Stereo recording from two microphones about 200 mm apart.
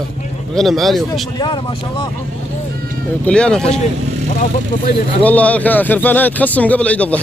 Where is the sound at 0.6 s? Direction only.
Centre (ahead or behind).